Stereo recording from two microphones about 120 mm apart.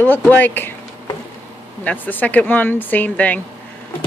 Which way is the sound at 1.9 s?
15° left (ahead or behind).